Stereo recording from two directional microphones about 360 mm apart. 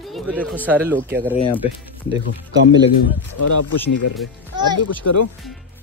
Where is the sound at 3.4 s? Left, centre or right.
Left.